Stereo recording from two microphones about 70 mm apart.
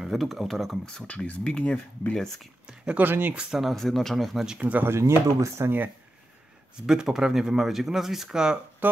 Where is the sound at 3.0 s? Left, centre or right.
Right.